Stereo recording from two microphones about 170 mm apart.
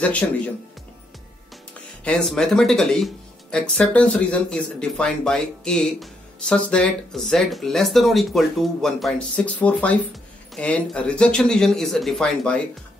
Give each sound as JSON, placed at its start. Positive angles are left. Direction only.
{"t": 0.0, "sound": "speech", "side_deg": 5}
{"t": 1.7, "sound": "speech", "side_deg": 5}